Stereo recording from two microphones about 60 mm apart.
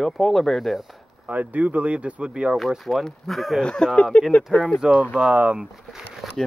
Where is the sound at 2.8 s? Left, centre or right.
Centre.